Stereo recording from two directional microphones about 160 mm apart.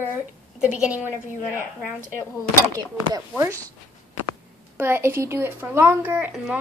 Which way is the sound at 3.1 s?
20° right (ahead or behind).